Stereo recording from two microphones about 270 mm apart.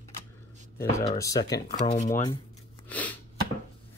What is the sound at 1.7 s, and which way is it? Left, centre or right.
Speech, left.